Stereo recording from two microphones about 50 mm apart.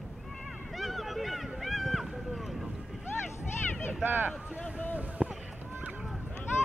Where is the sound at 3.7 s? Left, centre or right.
Left.